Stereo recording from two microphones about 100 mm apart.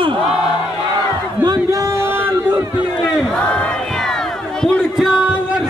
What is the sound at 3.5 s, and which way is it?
Crowd, 10° left (ahead or behind).